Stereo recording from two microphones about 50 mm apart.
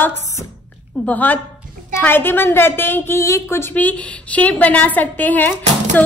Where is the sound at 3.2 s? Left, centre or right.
Left.